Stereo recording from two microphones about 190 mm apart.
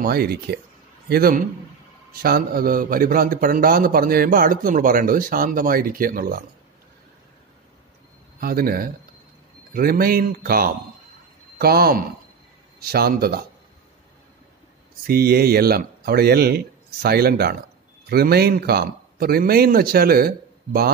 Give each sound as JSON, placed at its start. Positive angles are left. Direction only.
{"t": 0.0, "sound": "a man's voice", "side_deg": -55}
{"t": 8.4, "sound": "a man's voice", "side_deg": -50}
{"t": 15.0, "sound": "a man's voice", "side_deg": -55}